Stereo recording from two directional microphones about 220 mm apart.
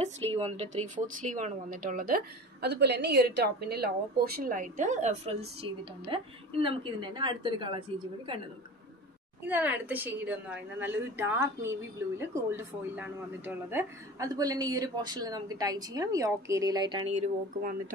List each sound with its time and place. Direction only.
0.0 s a woman's voice: 30° right (ahead or behind)
9.5 s a woman's voice: 10° right (ahead or behind); by 17.2 s 25° right (ahead or behind)